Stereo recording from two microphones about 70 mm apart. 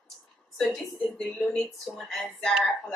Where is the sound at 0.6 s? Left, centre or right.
Centre.